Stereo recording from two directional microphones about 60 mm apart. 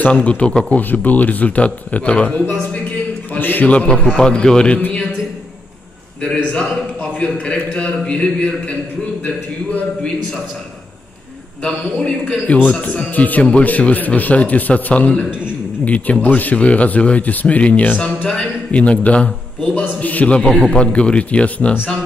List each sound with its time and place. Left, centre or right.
0.0 s speech: left
0.7 s speech: left
3.3 s speech: left; by 4.7 s centre
6.2 s a man's voice: centre; by 9.8 s left
11.6 s speech: centre
20.3 s speech: centre